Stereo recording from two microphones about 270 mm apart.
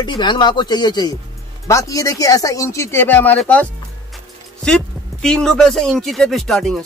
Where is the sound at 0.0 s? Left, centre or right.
Centre.